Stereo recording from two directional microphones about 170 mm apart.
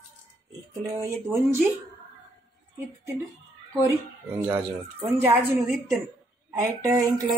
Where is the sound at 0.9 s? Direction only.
15° right (ahead or behind).